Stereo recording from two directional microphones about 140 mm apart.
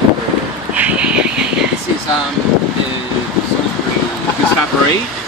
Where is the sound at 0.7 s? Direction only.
10° right (ahead or behind).